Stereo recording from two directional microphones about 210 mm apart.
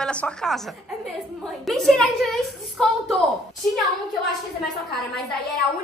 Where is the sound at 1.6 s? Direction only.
Centre (ahead or behind).